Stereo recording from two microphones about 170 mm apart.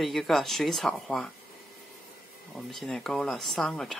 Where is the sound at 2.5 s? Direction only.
Centre (ahead or behind).